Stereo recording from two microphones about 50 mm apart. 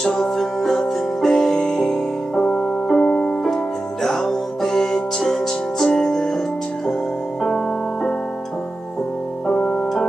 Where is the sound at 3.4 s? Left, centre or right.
Centre.